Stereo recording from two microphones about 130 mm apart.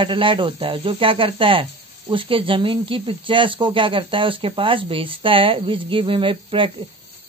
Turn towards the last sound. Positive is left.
turn(degrees=-40)  # may be behind; listen again after turning